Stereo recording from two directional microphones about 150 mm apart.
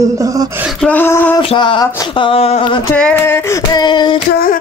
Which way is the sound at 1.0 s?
15° left (ahead or behind).